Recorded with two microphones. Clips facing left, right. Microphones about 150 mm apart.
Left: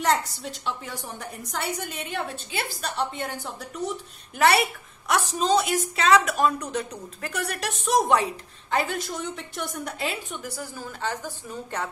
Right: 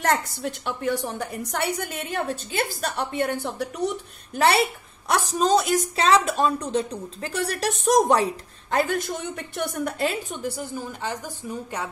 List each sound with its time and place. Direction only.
0.0 s a woman's voice: 50° right (ahead or behind); by 2.0 s 65° right (ahead or behind)
2.0 s a woman's voice: 40° right (ahead or behind); by 3.9 s 60° right (ahead or behind)
4.4 s a woman's voice: 30° right (ahead or behind)
6.0 s a woman's voice: 30° right (ahead or behind)
7.8 s a woman's voice: 40° right (ahead or behind)
10.4 s a woman's voice: 25° right (ahead or behind)